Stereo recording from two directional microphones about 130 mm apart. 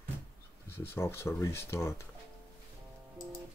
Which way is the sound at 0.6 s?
15° left (ahead or behind).